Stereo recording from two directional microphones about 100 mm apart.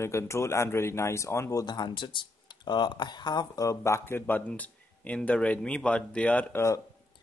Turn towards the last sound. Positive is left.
turn(degrees=15)  # may be behind; listen again after turning